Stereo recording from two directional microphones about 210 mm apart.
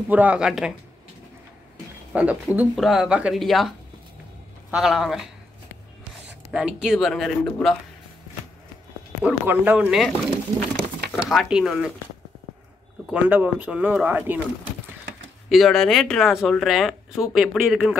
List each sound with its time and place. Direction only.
0.1 s speech: 5° right (ahead or behind)
2.1 s speech: 5° right (ahead or behind)
6.5 s speech: 5° right (ahead or behind)
9.2 s speech: 5° right (ahead or behind)
11.2 s speech: centre (ahead or behind)
13.1 s speech: 5° right (ahead or behind)
15.5 s speech: centre (ahead or behind)